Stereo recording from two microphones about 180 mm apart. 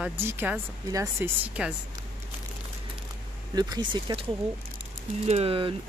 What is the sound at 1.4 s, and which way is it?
Speech, 5° right (ahead or behind).